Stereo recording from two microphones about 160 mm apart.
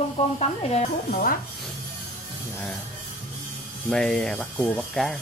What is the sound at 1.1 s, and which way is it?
Music, 60° left (ahead or behind).